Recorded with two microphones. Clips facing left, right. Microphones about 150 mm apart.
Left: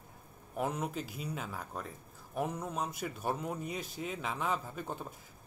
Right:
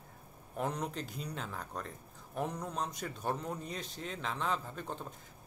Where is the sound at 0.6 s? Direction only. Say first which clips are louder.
Left 1 dB; 5° left (ahead or behind).